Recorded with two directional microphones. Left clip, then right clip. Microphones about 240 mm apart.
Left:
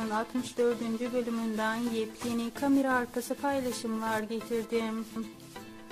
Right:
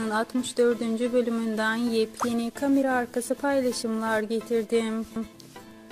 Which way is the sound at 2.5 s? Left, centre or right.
Centre.